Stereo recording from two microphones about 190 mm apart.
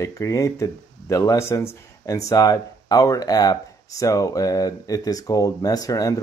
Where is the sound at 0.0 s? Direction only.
15° left (ahead or behind).